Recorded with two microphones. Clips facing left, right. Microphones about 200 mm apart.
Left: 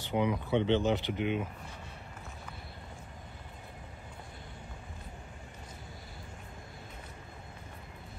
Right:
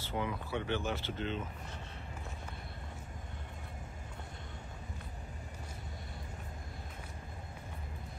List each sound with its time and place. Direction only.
0.0 s speech: 20° left (ahead or behind)